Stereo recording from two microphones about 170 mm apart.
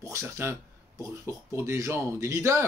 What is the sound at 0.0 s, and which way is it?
Speech, 15° right (ahead or behind).